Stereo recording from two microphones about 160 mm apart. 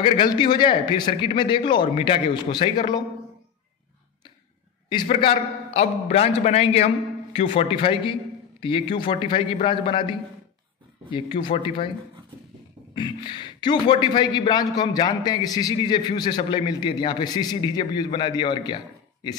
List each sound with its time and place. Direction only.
0.0 s a man's voice: 30° left (ahead or behind)
5.0 s a man's voice: 35° left (ahead or behind)
12.9 s speech: 30° left (ahead or behind)